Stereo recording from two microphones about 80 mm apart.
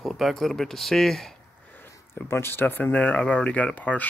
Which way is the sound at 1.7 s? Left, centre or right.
Left.